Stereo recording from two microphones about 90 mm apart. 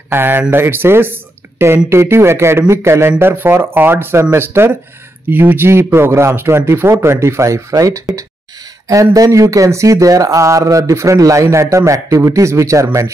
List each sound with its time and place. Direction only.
0.1 s speech: 25° right (ahead or behind)